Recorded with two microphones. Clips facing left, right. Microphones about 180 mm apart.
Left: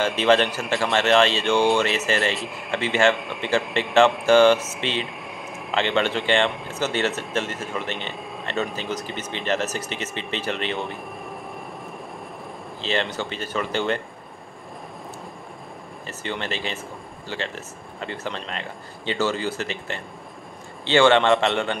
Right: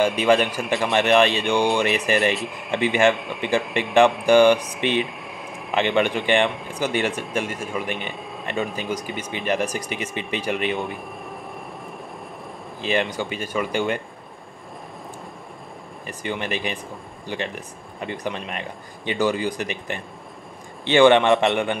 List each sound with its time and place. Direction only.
0.0 s speech: 10° right (ahead or behind)
2.3 s speech: centre (ahead or behind)
2.7 s speech: 15° right (ahead or behind)
5.0 s a sound: centre (ahead or behind)
5.8 s speech: 15° right (ahead or behind)
6.5 s speech: centre (ahead or behind)
6.8 s speech: 15° right (ahead or behind)
8.2 s a sound: centre (ahead or behind)
8.7 s speech: 10° right (ahead or behind)
12.8 s speech: 15° right (ahead or behind)
16.1 s speech: 15° right (ahead or behind)